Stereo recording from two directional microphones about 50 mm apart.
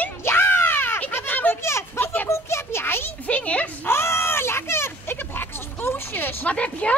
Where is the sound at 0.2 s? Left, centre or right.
Left.